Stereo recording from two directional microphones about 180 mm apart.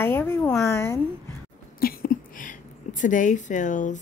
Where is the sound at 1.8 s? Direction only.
55° left (ahead or behind).